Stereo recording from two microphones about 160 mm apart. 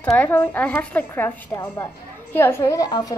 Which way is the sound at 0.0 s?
10° left (ahead or behind).